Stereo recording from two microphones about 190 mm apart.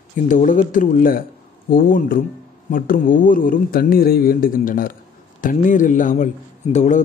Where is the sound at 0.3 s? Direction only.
40° left (ahead or behind).